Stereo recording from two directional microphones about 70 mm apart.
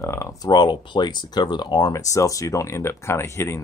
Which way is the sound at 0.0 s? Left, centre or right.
Left.